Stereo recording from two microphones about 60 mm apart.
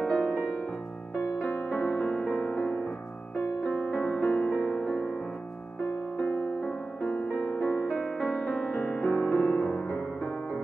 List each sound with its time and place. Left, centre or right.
0.0 s music: centre
1.7 s music: left
2.2 s music: centre
4.0 s music: left
4.6 s music: centre
6.2 s music: left
8.9 s music: left